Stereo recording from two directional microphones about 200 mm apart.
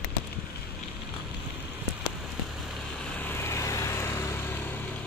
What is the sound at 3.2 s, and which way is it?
Vehicle, 10° left (ahead or behind).